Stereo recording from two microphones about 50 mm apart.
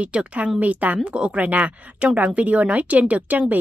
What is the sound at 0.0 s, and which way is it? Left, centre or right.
Speech, right.